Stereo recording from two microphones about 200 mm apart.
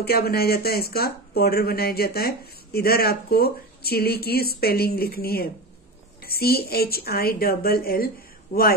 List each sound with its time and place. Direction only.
0.0 s speech: 50° left (ahead or behind)